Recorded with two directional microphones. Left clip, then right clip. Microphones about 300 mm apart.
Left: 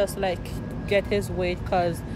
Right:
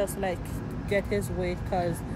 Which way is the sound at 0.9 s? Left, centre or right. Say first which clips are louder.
Left 5 dB; centre.